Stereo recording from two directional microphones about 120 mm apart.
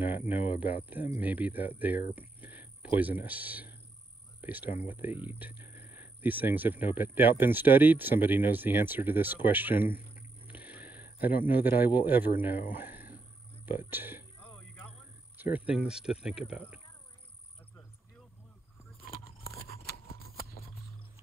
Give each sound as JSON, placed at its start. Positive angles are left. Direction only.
{"t": 0.0, "sound": "speech", "side_deg": -15}
{"t": 14.4, "sound": "music", "side_deg": 20}
{"t": 15.5, "sound": "speech", "side_deg": -10}